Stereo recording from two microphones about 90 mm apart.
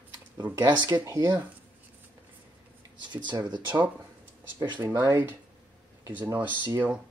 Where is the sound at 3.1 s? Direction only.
55° right (ahead or behind).